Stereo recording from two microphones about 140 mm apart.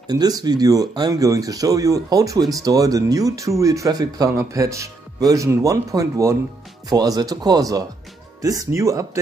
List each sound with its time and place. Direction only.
0.0 s speech: 30° right (ahead or behind)